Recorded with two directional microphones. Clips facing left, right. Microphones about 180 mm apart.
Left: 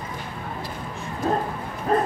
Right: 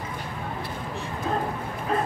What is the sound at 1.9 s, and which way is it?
Bow-wow, 45° left (ahead or behind).